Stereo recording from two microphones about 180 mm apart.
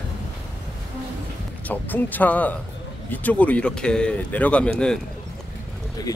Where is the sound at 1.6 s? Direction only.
10° left (ahead or behind).